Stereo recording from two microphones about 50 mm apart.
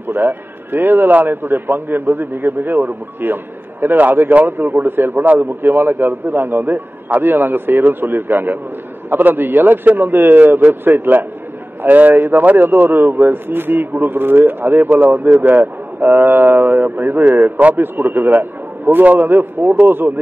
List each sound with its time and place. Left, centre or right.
0.1 s a man's voice: right